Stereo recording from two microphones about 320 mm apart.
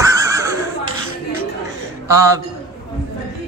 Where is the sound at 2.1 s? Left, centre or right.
Centre.